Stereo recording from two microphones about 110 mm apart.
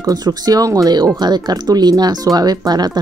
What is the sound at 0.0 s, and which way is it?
Speech, 35° right (ahead or behind).